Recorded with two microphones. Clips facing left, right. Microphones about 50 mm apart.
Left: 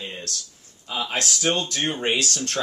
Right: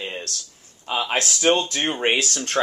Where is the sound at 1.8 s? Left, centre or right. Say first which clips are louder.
Right 2 dB; right.